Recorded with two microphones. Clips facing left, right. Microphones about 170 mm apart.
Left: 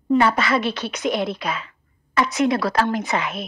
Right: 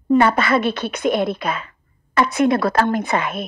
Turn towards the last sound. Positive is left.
turn(degrees=-55)  # may be behind; listen again after turning